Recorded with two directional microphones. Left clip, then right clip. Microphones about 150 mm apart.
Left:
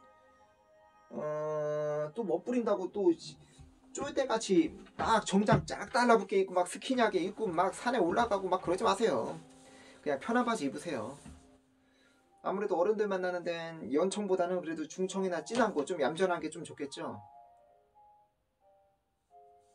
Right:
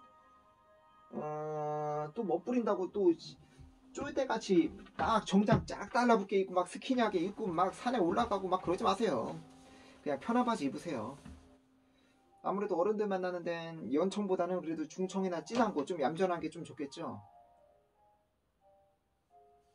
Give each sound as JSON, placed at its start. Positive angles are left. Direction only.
{"t": 1.2, "sound": "a sound", "side_deg": 5}
{"t": 3.9, "sound": "speech", "side_deg": 5}
{"t": 12.4, "sound": "speech", "side_deg": -15}